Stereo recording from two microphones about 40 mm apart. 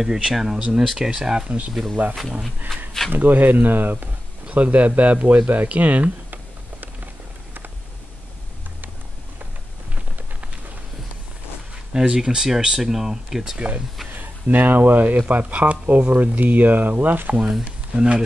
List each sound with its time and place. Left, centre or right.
0.0 s speech: centre
2.0 s speech: right
5.7 s computer keyboard: right
11.9 s speech: centre
13.6 s speech: right
14.5 s speech: right
17.4 s speech: centre
17.9 s speech: right